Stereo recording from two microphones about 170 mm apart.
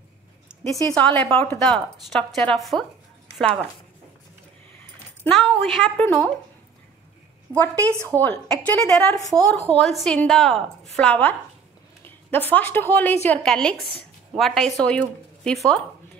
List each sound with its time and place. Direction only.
0.8 s a woman's voice: 5° left (ahead or behind)
5.3 s a woman's voice: centre (ahead or behind)
7.7 s a woman's voice: 20° right (ahead or behind)
8.2 s a woman's voice: 10° left (ahead or behind)